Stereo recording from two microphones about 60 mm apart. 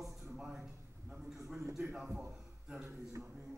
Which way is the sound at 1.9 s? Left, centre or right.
Centre.